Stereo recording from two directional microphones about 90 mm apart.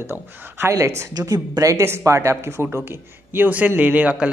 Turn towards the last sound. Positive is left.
turn(degrees=-15)  # may be behind; listen again after turning